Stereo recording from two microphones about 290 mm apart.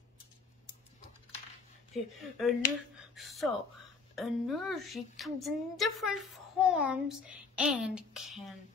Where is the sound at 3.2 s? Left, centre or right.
Centre.